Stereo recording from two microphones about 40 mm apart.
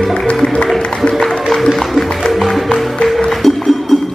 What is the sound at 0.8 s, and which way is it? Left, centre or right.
Music, centre.